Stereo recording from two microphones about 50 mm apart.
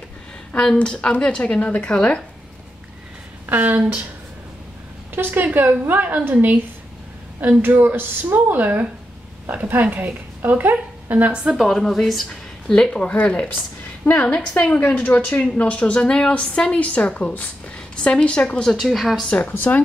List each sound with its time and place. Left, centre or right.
0.6 s a woman's voice: centre
3.4 s a woman's voice: right
5.1 s a woman's voice: right
7.8 s a woman's voice: right
11.5 s a woman's voice: centre
12.7 s a woman's voice: centre
14.0 s a woman's voice: left
14.6 s a woman's voice: left
18.8 s a woman's voice: centre
19.5 s speech: left